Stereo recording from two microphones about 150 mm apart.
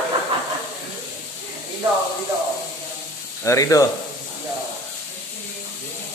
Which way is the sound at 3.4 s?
20° left (ahead or behind).